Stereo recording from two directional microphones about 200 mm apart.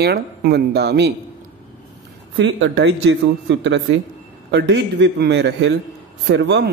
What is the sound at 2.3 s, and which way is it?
A man's voice, 70° right (ahead or behind).